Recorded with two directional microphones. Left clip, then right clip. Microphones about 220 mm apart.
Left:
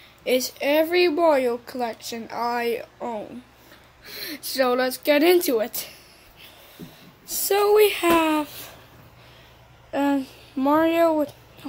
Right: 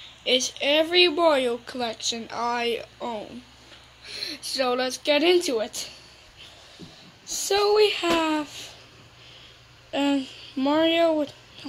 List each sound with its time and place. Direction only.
0.6 s speech: 10° left (ahead or behind)
4.0 s speech: 15° left (ahead or behind)
7.2 s speech: 10° left (ahead or behind)
9.8 s speech: centre (ahead or behind)